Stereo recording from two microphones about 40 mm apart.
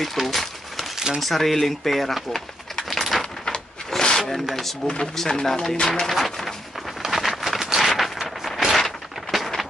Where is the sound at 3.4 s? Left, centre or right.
Centre.